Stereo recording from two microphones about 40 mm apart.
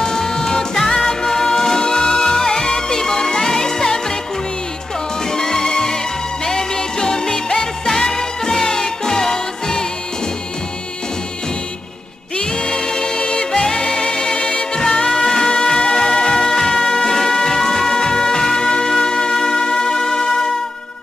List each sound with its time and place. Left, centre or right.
0.0 s music: centre
5.3 s music: centre
12.4 s music: centre